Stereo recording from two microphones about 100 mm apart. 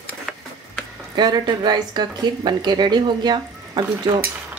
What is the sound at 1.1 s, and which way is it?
Speech, 45° right (ahead or behind).